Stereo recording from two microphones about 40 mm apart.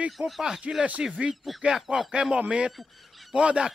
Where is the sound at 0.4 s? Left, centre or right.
Centre.